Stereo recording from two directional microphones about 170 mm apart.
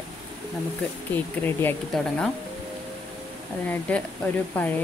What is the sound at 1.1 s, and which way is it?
Speech, 10° left (ahead or behind).